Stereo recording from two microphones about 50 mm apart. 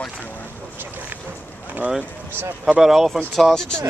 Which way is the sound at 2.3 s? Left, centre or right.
Right.